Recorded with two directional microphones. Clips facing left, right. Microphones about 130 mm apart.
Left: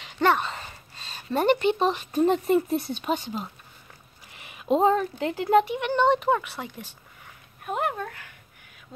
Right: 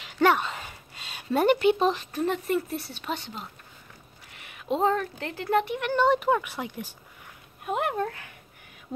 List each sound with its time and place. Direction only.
0.0 s a sound: 10° right (ahead or behind)
2.1 s speech: 20° left (ahead or behind)
5.8 s speech: 5° right (ahead or behind)